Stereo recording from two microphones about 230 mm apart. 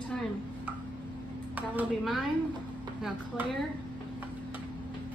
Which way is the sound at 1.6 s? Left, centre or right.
Centre.